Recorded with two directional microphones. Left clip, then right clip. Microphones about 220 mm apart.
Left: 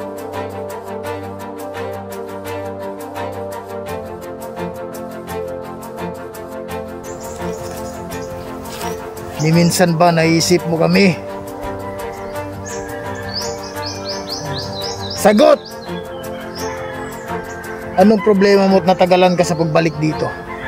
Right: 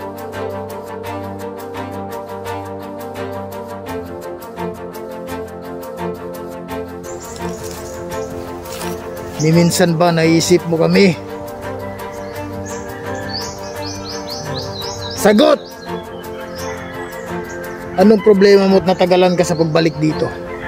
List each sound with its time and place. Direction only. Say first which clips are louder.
9.5 s a man's voice: right 1 dB; 5° right (ahead or behind)
15.2 s a man's voice: left 1 dB; 5° right (ahead or behind)
17.9 s a man's voice: right 2 dB; centre (ahead or behind)